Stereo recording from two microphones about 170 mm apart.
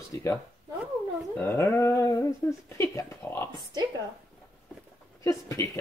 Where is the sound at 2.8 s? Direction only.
15° left (ahead or behind).